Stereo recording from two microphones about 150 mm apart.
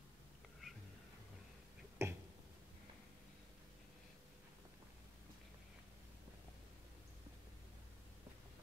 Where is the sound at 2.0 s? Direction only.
15° right (ahead or behind).